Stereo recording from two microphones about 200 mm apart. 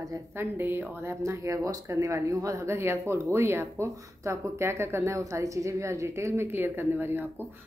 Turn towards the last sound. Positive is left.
turn(degrees=-10)  # may be behind; listen again after turning